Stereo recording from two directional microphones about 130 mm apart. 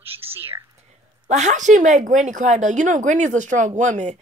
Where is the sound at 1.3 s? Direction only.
65° right (ahead or behind).